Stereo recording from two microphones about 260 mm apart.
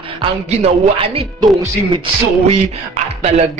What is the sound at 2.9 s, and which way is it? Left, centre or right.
Speech, right.